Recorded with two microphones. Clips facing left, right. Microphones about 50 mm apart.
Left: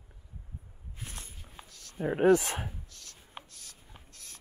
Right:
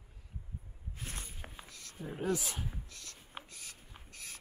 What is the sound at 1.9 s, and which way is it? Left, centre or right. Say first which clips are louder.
Speech: left 12 dB; left.